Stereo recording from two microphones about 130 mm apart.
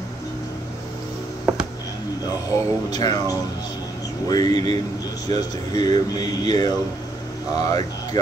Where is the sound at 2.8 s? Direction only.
30° left (ahead or behind).